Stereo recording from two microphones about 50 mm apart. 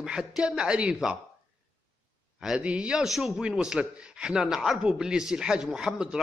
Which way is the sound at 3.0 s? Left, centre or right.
Centre.